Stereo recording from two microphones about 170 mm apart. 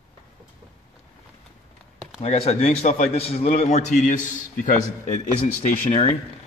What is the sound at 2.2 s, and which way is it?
A man's voice, 40° left (ahead or behind).